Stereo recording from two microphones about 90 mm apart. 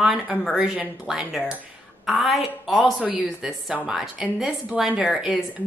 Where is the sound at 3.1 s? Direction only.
15° right (ahead or behind).